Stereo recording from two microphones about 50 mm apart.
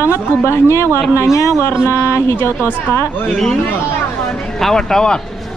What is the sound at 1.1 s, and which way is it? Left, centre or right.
Speech, left.